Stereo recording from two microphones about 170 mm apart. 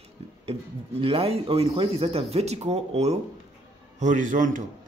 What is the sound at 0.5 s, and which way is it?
A man's voice, 35° right (ahead or behind).